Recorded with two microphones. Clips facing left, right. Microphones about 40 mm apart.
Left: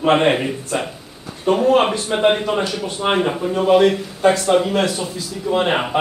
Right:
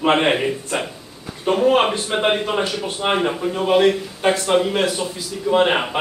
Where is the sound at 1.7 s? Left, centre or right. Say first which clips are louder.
Left 2 dB; centre.